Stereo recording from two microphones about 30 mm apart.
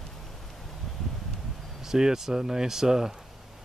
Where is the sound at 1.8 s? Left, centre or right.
Centre.